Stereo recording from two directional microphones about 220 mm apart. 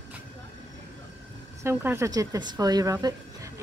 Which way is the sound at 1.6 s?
10° right (ahead or behind).